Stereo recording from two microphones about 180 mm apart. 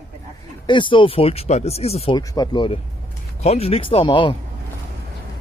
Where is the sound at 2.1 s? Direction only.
25° left (ahead or behind).